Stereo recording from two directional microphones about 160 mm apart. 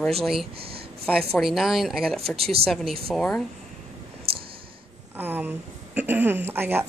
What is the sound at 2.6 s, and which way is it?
Speech, centre (ahead or behind).